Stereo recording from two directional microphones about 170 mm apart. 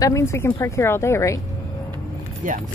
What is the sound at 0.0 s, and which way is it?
Speech, 15° left (ahead or behind).